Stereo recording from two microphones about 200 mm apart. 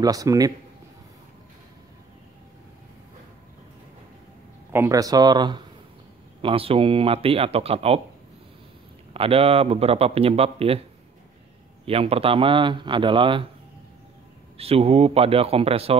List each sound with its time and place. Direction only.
0.0 s a man's voice: 15° right (ahead or behind)
4.7 s speech: 15° right (ahead or behind)
9.1 s speech: 30° right (ahead or behind)
11.8 s speech: 30° right (ahead or behind)
14.6 s speech: 30° right (ahead or behind)